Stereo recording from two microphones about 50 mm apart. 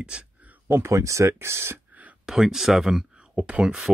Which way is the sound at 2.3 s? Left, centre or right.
Centre.